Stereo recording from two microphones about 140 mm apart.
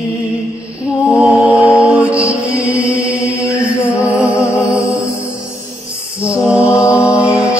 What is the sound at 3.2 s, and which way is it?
Chant, 20° left (ahead or behind).